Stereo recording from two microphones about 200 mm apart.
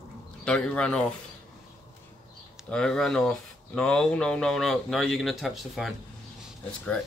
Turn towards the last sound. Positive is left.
turn(degrees=5)  # may be behind; listen again after turning